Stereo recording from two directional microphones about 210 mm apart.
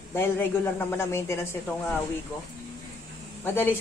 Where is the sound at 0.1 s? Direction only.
10° left (ahead or behind).